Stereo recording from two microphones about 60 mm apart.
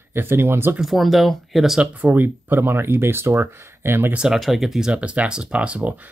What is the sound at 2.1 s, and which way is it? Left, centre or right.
Speech, right.